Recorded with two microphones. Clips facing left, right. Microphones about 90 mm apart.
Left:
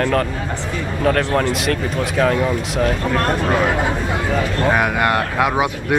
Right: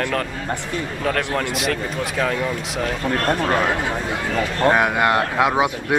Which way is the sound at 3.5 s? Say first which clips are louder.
Left 3 dB; 5° left (ahead or behind).